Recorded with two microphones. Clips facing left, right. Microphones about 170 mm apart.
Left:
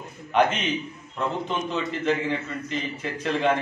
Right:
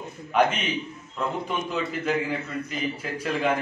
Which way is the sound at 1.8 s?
5° right (ahead or behind).